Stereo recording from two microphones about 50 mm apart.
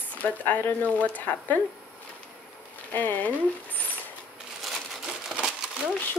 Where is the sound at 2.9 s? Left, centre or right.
Left.